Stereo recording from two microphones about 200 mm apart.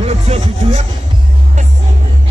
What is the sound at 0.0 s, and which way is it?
Music, 30° right (ahead or behind).